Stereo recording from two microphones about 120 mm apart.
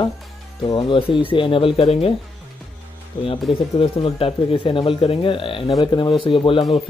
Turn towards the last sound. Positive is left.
turn(degrees=45)  # may be behind; listen again after turning